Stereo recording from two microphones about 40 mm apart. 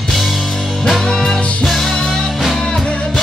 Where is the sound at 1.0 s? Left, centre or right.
Centre.